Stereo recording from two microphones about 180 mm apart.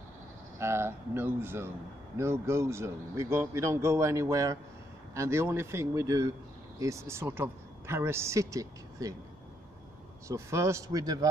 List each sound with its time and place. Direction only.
0.6 s a man's voice: 15° right (ahead or behind)
10.2 s a man's voice: 15° right (ahead or behind)